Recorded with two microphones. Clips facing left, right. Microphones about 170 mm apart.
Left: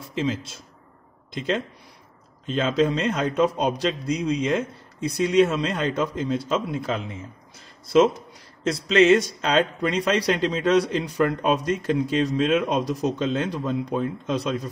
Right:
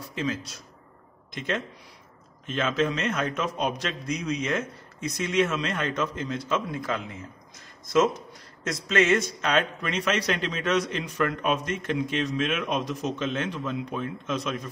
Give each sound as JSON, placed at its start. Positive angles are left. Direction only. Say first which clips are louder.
{"t": 0.1, "sound": "speech", "louder": "left 4 dB", "side_deg": 25}